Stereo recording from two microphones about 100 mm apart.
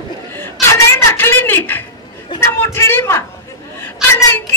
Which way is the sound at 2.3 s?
25° left (ahead or behind).